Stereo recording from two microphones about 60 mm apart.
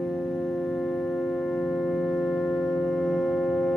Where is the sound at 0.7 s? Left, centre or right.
Centre.